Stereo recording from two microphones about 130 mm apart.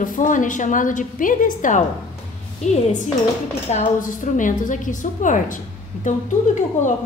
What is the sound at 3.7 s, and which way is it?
A woman's voice, 75° left (ahead or behind).